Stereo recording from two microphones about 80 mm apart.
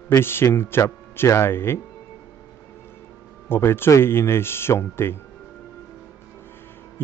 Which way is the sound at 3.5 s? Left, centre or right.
Left.